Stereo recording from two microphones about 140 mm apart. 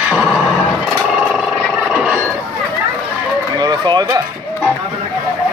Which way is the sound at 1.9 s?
10° right (ahead or behind).